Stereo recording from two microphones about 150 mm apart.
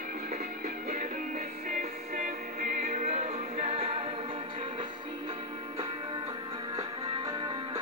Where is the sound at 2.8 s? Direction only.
50° right (ahead or behind).